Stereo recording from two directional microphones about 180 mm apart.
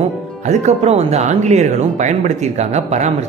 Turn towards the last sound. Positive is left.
turn(degrees=-40)  # may be behind; listen again after turning